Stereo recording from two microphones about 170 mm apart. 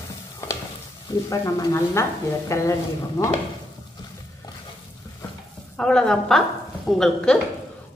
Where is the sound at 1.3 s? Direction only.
20° left (ahead or behind).